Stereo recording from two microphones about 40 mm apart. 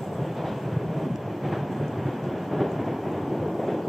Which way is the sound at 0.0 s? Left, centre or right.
Centre.